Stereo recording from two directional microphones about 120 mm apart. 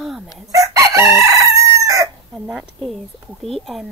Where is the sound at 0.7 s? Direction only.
25° right (ahead or behind).